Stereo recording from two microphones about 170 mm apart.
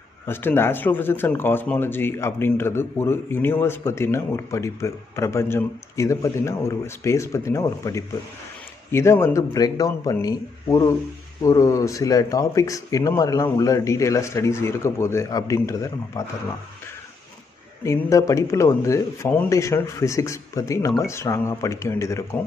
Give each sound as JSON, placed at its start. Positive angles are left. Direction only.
{"t": 0.3, "sound": "speech", "side_deg": 15}
{"t": 17.8, "sound": "speech", "side_deg": 20}